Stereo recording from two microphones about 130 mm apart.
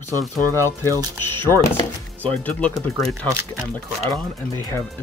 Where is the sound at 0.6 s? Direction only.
20° left (ahead or behind).